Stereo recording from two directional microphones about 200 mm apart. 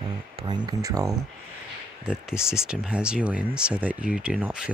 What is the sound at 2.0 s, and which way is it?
Speech, 5° right (ahead or behind).